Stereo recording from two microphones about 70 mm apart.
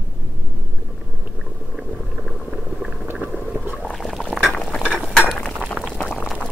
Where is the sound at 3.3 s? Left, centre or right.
Right.